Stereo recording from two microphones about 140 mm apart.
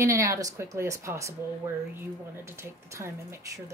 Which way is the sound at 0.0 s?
20° right (ahead or behind).